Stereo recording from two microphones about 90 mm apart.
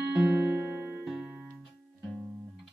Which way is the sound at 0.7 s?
20° right (ahead or behind).